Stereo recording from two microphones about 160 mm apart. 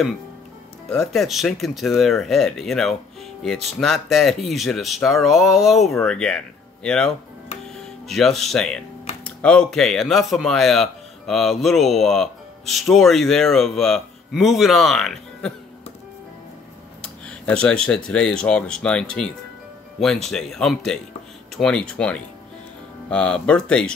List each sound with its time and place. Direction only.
1.1 s speech: centre (ahead or behind)
17.0 s speech: 5° left (ahead or behind)